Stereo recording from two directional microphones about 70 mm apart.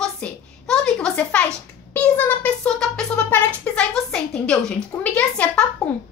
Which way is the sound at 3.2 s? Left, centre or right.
Centre.